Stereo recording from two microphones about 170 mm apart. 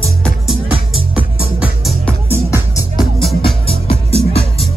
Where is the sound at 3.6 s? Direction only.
35° left (ahead or behind).